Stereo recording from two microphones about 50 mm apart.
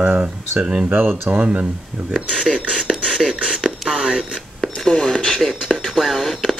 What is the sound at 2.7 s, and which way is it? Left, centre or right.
Beatboxing, centre.